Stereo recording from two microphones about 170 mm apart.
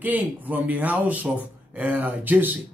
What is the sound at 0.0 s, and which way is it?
Speech, 10° right (ahead or behind).